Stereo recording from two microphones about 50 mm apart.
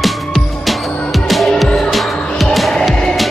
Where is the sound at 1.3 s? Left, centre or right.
Centre.